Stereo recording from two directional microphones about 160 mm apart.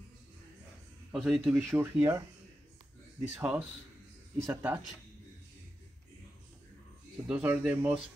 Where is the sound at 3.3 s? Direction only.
10° right (ahead or behind).